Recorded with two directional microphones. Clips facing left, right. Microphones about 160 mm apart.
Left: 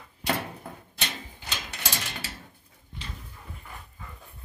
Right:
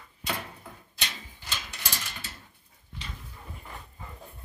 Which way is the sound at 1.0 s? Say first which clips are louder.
Left 3 dB; 55° left (ahead or behind).